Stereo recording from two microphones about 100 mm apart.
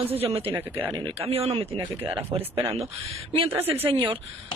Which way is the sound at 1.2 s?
75° right (ahead or behind).